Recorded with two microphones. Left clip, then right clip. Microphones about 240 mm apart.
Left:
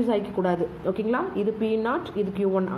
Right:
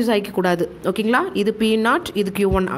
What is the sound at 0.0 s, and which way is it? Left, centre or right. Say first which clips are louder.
A woman's voice: right 5 dB; right.